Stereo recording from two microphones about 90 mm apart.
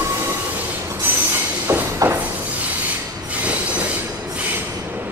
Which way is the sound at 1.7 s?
30° right (ahead or behind).